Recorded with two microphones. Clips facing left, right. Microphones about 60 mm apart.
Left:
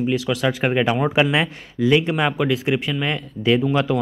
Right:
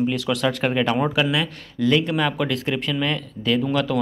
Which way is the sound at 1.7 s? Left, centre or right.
Centre.